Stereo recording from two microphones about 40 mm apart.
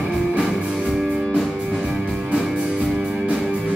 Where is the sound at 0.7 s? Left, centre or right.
Centre.